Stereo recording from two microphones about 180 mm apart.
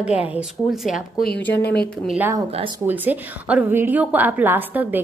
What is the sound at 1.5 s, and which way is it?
Speech, 65° left (ahead or behind).